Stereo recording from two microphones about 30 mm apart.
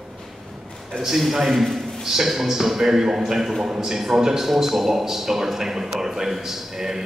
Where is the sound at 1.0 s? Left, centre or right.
Centre.